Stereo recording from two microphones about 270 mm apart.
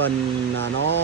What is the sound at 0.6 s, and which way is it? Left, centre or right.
Vehicle, right.